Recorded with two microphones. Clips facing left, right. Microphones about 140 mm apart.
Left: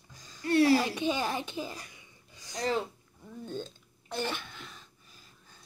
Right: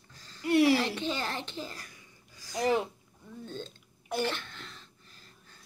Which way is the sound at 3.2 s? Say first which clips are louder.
Left 2 dB; 10° left (ahead or behind).